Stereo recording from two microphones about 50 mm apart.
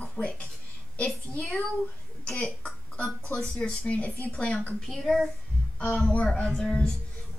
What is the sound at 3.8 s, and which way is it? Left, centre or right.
Speech, left.